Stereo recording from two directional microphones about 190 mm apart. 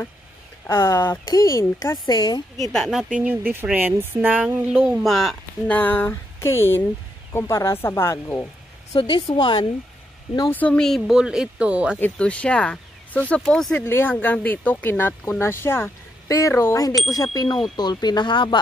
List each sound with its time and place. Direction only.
0.7 s speech: 15° left (ahead or behind)
2.7 s speech: centre (ahead or behind)
8.9 s speech: 25° left (ahead or behind)
10.5 s speech: 5° left (ahead or behind)
12.0 s speech: 5° left (ahead or behind); by 18.6 s 25° left (ahead or behind)